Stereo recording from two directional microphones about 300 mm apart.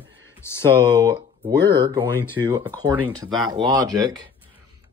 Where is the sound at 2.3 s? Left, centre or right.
Centre.